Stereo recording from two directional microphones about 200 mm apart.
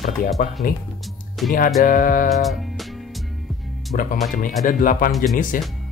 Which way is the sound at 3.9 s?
40° left (ahead or behind).